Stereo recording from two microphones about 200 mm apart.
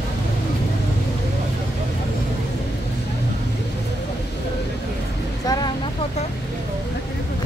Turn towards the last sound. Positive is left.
turn(degrees=20)  # may be behind; listen again after turning